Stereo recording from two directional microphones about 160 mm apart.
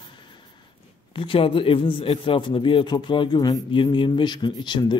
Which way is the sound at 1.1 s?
35° left (ahead or behind).